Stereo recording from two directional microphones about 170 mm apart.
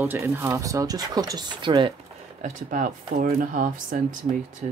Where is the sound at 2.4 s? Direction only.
50° right (ahead or behind).